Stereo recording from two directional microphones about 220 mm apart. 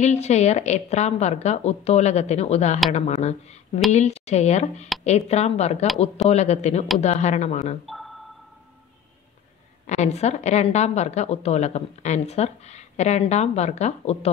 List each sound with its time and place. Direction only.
0.0 s a woman's voice: 30° left (ahead or behind)
7.8 s a sound: centre (ahead or behind)
9.8 s a woman's voice: 30° left (ahead or behind)